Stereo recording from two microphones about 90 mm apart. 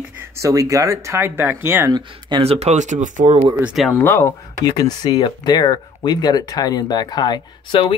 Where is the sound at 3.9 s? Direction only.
30° left (ahead or behind).